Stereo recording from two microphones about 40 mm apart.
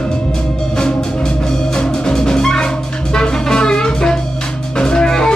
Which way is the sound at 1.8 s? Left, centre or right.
Centre.